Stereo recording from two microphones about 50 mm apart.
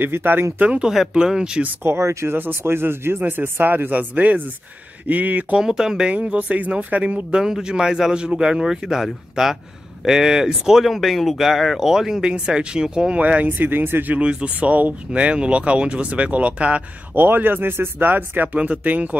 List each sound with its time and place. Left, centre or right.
0.0 s speech: right
0.6 s speech: right
1.1 s speech: centre
1.9 s speech: right
2.6 s speech: right
5.6 s speech: centre
6.1 s speech: right
13.1 s speech: right
13.6 s speech: right
14.1 s speech: right
17.1 s speech: right
18.6 s speech: right